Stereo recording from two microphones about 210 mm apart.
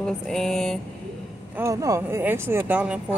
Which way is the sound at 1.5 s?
15° right (ahead or behind).